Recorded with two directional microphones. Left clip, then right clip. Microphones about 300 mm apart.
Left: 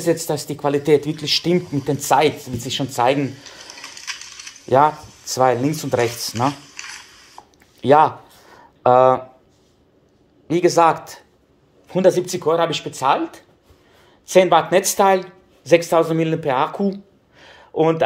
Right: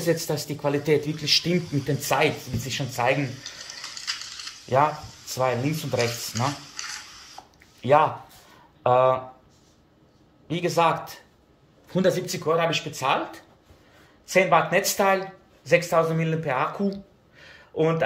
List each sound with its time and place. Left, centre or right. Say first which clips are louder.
0.0 s speech: left 5 dB; centre
4.6 s speech: left 7 dB; left
7.8 s speech: left 6 dB; centre
10.5 s speech: left 7 dB; centre